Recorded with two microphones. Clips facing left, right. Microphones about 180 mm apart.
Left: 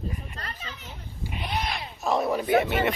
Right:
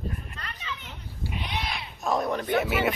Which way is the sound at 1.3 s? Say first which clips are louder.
Left 3 dB; centre (ahead or behind).